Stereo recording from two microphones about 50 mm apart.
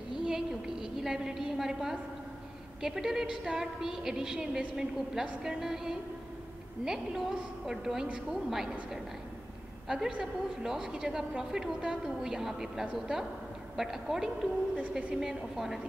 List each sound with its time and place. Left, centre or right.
0.2 s a sound: centre
2.8 s a woman's voice: centre
9.8 s a woman's voice: centre
14.8 s a woman's voice: right
15.1 s a woman's voice: centre